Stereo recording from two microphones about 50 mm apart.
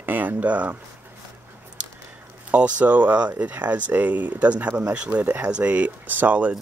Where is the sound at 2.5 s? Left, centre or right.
Right.